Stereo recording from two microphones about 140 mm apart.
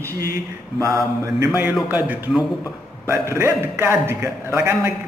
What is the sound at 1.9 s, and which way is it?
A man's voice, 10° right (ahead or behind).